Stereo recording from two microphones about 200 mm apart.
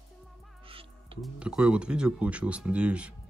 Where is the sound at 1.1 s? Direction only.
5° right (ahead or behind).